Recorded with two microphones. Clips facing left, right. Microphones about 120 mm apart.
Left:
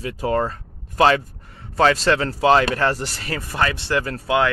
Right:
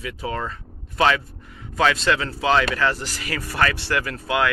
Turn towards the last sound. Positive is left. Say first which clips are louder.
# left 3 dB
turn(degrees=30)  # may be behind; listen again after turning